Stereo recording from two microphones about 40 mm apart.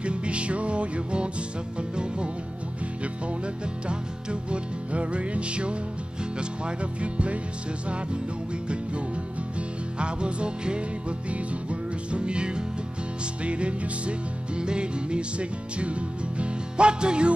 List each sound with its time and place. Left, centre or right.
0.0 s music: right
3.8 s music: right
6.3 s speech: right
9.6 s music: right